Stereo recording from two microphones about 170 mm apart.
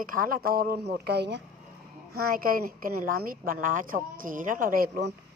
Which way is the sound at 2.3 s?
55° right (ahead or behind).